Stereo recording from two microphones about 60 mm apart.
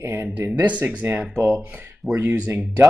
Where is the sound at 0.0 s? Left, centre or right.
Right.